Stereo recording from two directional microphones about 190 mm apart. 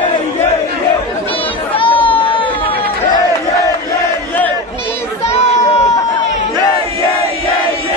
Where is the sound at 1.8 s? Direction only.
25° left (ahead or behind).